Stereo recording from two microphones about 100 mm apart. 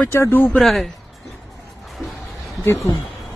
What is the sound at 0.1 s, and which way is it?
Speech, 20° left (ahead or behind).